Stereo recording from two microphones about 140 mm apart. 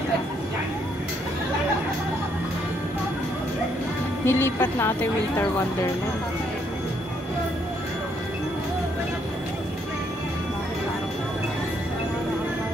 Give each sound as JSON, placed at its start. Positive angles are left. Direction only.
{"t": 4.3, "sound": "a woman's voice", "side_deg": 15}